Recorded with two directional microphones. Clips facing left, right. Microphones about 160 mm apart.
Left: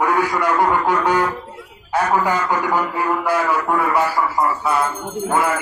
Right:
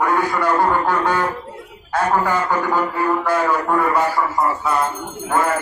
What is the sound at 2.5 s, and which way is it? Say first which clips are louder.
Speech: even; 10° left (ahead or behind).